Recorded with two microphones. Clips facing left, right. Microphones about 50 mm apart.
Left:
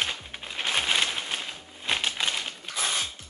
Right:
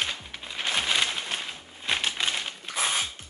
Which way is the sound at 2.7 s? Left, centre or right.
Centre.